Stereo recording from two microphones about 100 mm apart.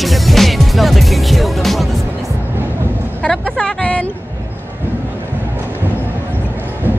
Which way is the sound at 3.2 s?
10° left (ahead or behind).